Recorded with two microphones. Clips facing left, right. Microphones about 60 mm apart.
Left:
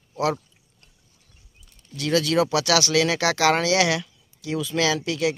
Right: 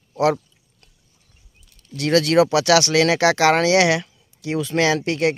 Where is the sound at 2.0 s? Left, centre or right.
Right.